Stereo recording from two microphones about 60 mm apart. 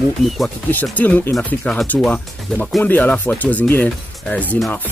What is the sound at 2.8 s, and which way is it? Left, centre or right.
Speech, left.